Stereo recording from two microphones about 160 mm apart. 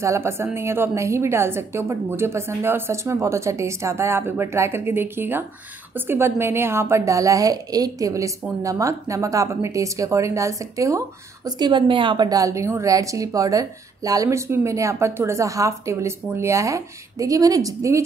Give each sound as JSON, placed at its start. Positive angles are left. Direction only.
{"t": 0.0, "sound": "a woman's voice", "side_deg": -15}